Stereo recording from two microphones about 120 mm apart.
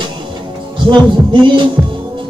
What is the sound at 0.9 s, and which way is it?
Heart sounds, 40° right (ahead or behind).